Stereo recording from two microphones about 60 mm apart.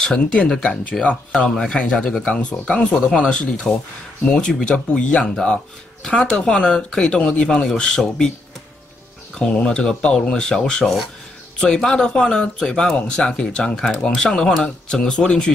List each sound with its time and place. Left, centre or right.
0.0 s speech: centre
1.5 s speech: centre
9.4 s speech: centre